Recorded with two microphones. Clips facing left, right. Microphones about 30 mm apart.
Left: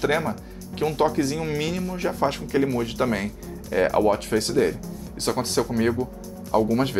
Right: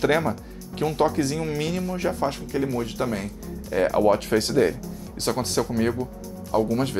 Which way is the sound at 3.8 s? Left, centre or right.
Centre.